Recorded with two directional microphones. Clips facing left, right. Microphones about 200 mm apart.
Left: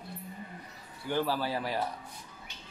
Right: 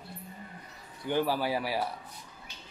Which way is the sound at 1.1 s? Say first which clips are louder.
Right 2 dB; 15° right (ahead or behind).